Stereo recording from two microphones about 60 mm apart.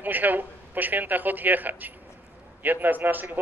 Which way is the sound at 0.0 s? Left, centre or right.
Right.